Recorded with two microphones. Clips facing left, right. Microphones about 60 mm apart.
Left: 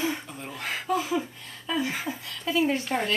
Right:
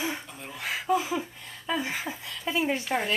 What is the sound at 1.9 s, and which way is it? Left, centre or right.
Speech, centre.